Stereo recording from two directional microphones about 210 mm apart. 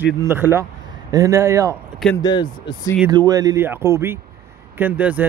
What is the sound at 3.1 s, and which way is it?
Speech, 20° right (ahead or behind).